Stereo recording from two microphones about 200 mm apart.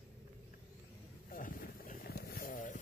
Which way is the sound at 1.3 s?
45° left (ahead or behind).